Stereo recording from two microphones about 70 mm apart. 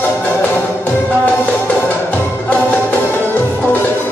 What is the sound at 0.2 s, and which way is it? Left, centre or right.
Music, left.